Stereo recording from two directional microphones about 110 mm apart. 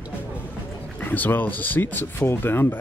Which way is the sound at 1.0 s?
15° left (ahead or behind).